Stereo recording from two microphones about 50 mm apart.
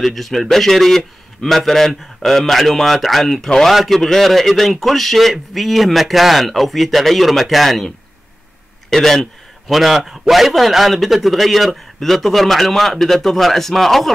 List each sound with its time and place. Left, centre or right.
0.0 s a man's voice: centre
8.9 s a man's voice: centre